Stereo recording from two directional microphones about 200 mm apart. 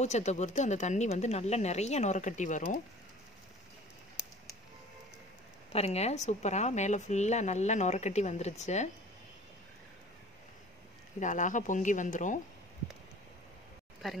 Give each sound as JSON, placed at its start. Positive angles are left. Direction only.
{"t": 0.0, "sound": "speech", "side_deg": 35}
{"t": 5.7, "sound": "speech", "side_deg": 30}
{"t": 11.1, "sound": "speech", "side_deg": 40}